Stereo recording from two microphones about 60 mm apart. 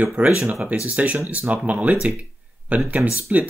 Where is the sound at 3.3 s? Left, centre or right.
Right.